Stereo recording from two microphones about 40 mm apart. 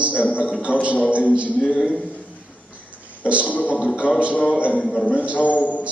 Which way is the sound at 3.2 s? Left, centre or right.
Right.